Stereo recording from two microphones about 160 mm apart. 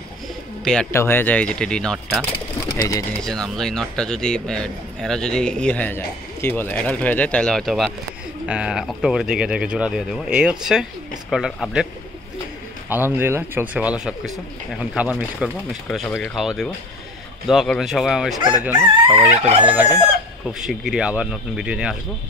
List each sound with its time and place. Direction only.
0.9 s speech: 15° left (ahead or behind)
2.7 s speech: 20° left (ahead or behind)
3.2 s a man's voice: 5° left (ahead or behind)
12.9 s a man's voice: 15° right (ahead or behind)